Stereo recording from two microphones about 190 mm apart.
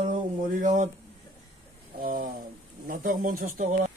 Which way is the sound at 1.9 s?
50° right (ahead or behind).